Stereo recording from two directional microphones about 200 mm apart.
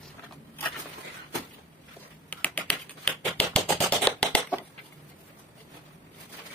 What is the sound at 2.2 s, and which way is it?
Typing, 10° left (ahead or behind).